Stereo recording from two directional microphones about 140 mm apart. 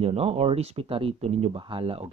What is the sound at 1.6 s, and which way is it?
Speech, 40° right (ahead or behind).